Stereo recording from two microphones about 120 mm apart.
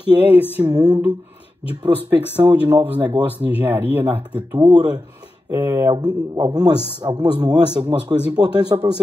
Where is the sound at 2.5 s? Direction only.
15° right (ahead or behind).